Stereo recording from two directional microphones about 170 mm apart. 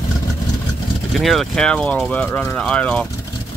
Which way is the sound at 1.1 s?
Centre (ahead or behind).